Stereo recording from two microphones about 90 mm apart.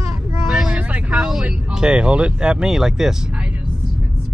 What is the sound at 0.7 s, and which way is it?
Vehicle, 15° right (ahead or behind).